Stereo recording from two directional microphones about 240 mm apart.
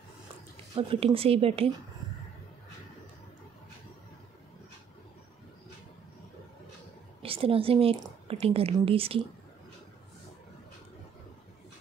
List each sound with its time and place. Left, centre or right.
0.7 s a woman's voice: right
7.2 s a woman's voice: right